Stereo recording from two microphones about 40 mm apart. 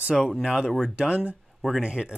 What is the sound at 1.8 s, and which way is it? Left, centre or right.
Speech, right.